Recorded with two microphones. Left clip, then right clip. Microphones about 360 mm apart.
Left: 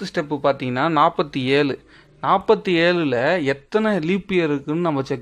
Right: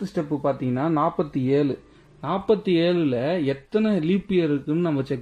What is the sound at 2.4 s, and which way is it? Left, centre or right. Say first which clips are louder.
Speech: right 1 dB; centre.